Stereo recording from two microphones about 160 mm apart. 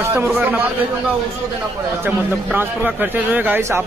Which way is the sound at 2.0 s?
10° right (ahead or behind).